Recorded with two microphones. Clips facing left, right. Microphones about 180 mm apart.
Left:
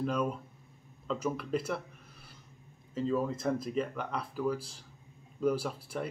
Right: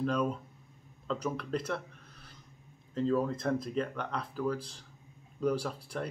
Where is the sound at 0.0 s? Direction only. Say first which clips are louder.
Right 1 dB; 5° left (ahead or behind).